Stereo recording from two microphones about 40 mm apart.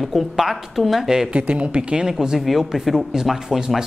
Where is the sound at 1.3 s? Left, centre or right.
Right.